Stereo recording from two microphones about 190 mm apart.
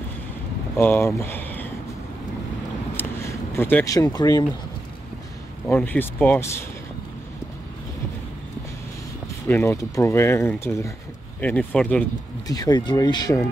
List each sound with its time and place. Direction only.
0.7 s speech: 10° left (ahead or behind)
3.0 s a sound: 10° left (ahead or behind)
3.5 s speech: 10° left (ahead or behind)
5.7 s speech: 10° left (ahead or behind)
9.5 s speech: 15° left (ahead or behind)
12.4 s speech: 20° left (ahead or behind)